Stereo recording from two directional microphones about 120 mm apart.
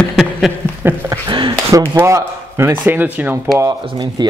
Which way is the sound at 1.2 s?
45° right (ahead or behind).